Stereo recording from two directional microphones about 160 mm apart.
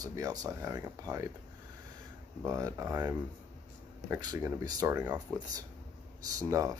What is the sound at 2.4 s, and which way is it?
Speech, 20° right (ahead or behind).